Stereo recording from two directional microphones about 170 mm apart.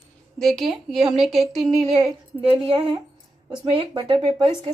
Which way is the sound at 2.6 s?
30° right (ahead or behind).